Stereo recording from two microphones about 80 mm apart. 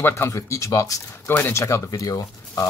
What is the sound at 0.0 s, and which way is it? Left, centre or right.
Speech, left.